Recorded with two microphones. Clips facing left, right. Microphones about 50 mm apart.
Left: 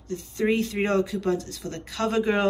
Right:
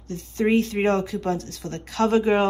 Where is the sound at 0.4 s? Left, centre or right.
Centre.